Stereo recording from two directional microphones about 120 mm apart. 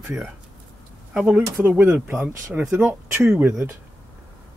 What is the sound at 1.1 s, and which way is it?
Speech, 10° right (ahead or behind).